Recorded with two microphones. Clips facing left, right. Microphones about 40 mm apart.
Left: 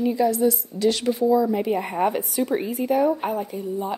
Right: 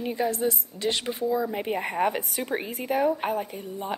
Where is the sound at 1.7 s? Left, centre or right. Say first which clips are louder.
Left 3 dB; right.